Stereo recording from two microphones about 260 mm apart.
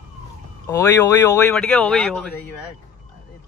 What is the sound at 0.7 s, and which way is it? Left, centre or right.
Speech, centre.